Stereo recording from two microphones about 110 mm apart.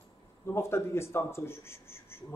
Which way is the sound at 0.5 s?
25° left (ahead or behind).